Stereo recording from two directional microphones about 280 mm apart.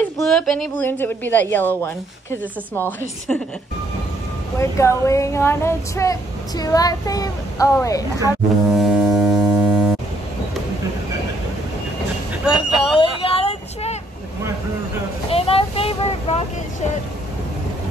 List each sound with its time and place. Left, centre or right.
0.3 s speech: centre
4.6 s speech: centre
8.7 s foghorn: centre
12.4 s a sound: centre
15.2 s vehicle: left